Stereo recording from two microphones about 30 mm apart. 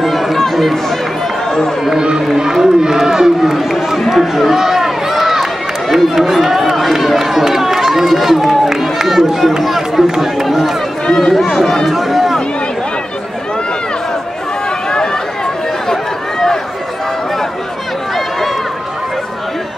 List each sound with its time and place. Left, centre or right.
0.0 s chatter: centre
0.5 s speech: centre
1.9 s speech: right
4.1 s run: centre
10.0 s run: centre
10.4 s a sound: centre
11.3 s speech: centre
11.9 s a sound: centre
15.9 s run: centre